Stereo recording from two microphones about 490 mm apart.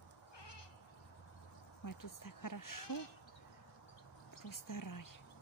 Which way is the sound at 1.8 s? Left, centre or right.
Left.